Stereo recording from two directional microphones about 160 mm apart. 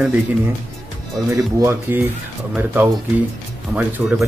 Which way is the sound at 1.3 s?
15° right (ahead or behind).